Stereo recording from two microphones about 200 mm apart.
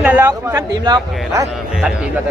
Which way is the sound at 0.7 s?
20° right (ahead or behind).